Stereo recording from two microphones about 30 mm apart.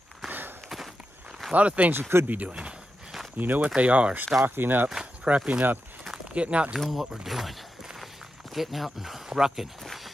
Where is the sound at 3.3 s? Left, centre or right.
Right.